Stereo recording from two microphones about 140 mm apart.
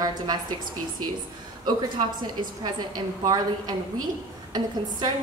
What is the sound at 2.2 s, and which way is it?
A woman's voice, 30° right (ahead or behind).